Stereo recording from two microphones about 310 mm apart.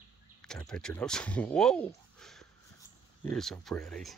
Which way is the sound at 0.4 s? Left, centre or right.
Centre.